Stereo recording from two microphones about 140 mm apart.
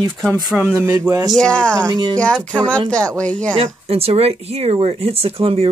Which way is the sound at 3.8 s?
45° right (ahead or behind).